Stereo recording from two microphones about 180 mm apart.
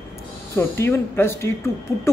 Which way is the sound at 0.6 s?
15° left (ahead or behind).